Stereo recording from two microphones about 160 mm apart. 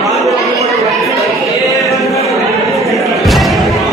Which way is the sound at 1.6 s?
Centre (ahead or behind).